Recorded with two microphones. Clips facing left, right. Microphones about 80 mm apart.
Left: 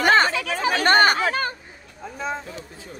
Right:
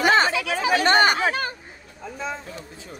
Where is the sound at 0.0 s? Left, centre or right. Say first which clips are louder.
Left 1 dB; left.